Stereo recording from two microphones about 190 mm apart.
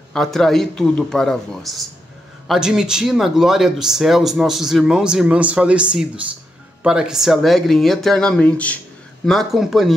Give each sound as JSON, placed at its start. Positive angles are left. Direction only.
{"t": 0.1, "sound": "speech", "side_deg": 0}